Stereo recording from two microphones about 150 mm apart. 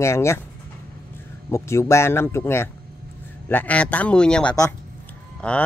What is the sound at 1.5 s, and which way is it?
Speech, 20° left (ahead or behind).